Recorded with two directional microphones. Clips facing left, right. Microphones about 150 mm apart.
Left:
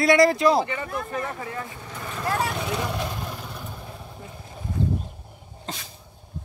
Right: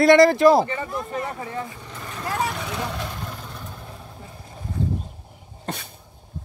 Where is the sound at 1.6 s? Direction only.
5° left (ahead or behind).